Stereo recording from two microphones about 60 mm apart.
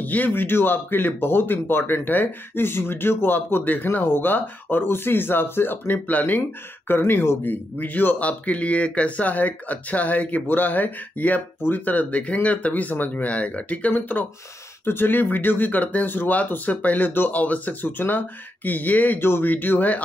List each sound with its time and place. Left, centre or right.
0.0 s speech: left
17.8 s speech: left